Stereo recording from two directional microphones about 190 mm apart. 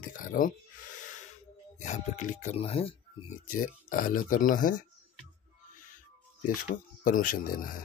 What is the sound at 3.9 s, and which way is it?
Speech, 45° left (ahead or behind).